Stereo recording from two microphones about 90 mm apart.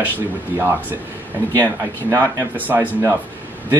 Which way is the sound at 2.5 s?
20° right (ahead or behind).